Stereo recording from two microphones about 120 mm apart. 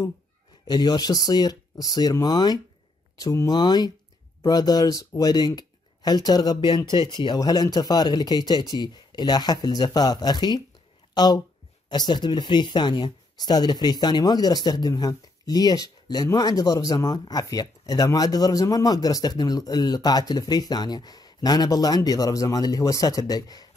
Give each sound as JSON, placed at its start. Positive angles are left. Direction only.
{"t": 0.7, "sound": "speech", "side_deg": 35}